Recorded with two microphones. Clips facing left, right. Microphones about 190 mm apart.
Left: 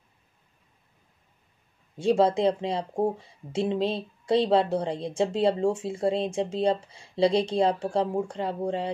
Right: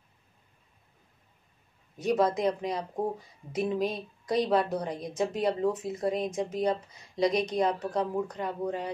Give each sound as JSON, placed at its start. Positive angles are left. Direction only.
{"t": 2.0, "sound": "speech", "side_deg": 30}